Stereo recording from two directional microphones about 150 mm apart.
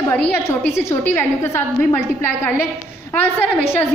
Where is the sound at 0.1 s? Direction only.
15° left (ahead or behind).